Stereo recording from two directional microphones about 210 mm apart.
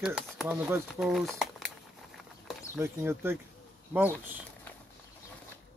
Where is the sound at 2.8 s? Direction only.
10° right (ahead or behind).